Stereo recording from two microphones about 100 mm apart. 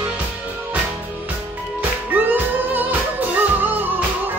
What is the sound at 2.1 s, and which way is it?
Music, 20° right (ahead or behind).